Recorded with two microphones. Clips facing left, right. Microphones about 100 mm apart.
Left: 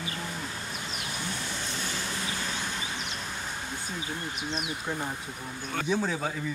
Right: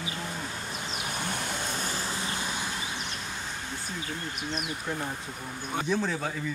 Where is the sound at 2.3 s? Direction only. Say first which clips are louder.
Right 1 dB; 10° right (ahead or behind).